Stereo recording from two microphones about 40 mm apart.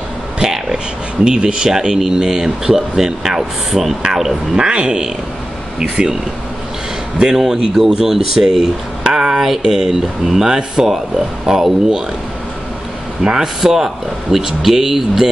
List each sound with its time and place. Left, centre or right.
0.4 s a sound: centre
1.2 s speech: centre
4.6 s speech: right
7.2 s speech: centre
13.2 s speech: centre